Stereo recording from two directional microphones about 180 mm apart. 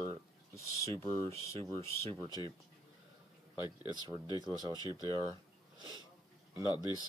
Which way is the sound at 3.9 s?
25° right (ahead or behind).